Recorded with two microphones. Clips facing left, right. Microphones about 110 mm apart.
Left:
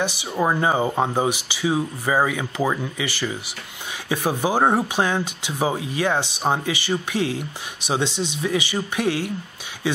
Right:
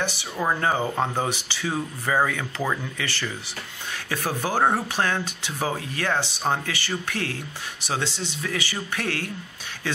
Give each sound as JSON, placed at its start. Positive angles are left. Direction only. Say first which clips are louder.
{"t": 0.0, "sound": "speech", "louder": "left 4 dB", "side_deg": 15}